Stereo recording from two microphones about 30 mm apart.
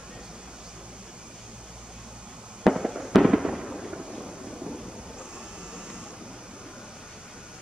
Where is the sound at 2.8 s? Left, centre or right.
Centre.